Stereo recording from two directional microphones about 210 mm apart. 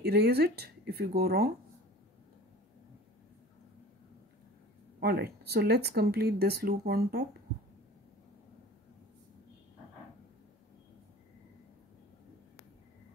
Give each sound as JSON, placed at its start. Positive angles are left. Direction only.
{"t": 0.0, "sound": "speech", "side_deg": -50}
{"t": 5.0, "sound": "speech", "side_deg": -50}